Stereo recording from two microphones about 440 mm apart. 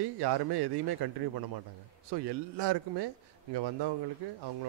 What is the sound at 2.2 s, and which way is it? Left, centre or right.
Speech, right.